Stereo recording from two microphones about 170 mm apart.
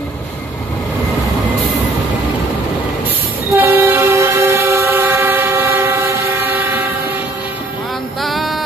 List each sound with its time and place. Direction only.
3.5 s train: 15° right (ahead or behind)
8.2 s music: centre (ahead or behind)